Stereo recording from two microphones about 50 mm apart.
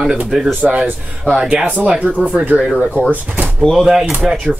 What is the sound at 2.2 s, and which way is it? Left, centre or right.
Speech, right.